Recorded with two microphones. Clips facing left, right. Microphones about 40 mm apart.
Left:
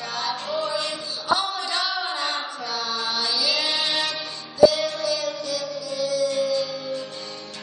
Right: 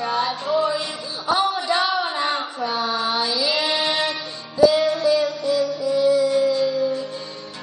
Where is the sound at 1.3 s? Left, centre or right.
Centre.